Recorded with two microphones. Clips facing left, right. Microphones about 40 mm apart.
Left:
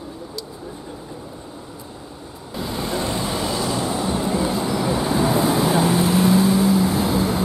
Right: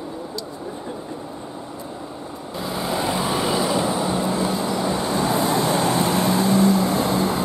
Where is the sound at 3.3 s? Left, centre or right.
Centre.